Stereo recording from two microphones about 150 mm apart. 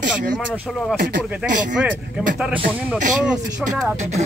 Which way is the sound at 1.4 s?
15° right (ahead or behind).